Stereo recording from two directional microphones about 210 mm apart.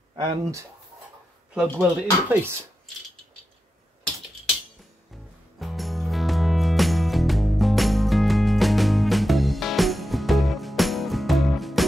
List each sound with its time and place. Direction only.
0.1 s speech: 20° right (ahead or behind)
1.5 s speech: 5° right (ahead or behind)
5.6 s music: centre (ahead or behind)